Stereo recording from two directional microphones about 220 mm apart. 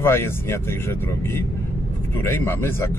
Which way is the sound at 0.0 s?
10° left (ahead or behind).